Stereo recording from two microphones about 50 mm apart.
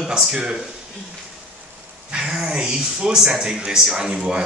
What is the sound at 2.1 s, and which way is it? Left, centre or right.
Speech, centre.